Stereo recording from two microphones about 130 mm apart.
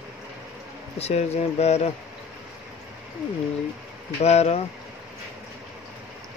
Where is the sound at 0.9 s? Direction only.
55° left (ahead or behind).